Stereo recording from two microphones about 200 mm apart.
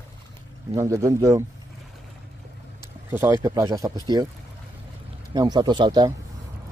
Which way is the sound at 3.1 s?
10° right (ahead or behind).